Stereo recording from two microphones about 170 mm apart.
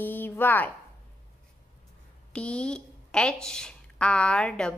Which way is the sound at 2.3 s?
5° left (ahead or behind).